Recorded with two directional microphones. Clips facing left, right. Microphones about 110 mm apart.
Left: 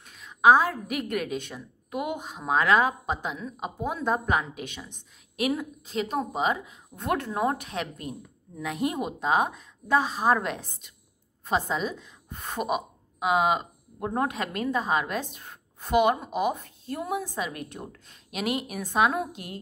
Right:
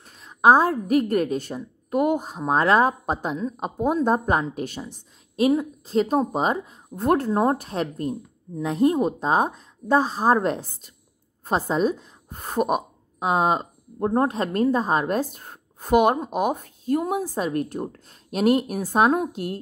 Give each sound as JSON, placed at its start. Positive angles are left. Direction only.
{"t": 0.0, "sound": "a woman's voice", "side_deg": -35}
{"t": 5.3, "sound": "a woman's voice", "side_deg": -30}